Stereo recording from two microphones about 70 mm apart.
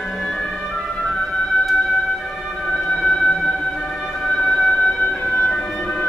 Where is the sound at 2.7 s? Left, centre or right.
Centre.